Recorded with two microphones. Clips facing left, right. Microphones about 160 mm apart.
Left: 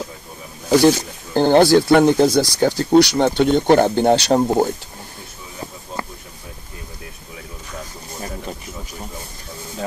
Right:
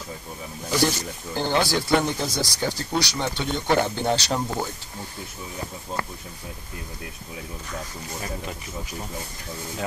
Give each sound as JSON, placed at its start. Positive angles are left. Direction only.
{"t": 0.7, "sound": "speech", "side_deg": 65}
{"t": 4.4, "sound": "speech", "side_deg": 40}